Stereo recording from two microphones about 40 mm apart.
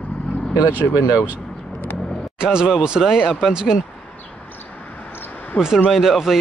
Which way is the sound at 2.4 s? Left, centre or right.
Centre.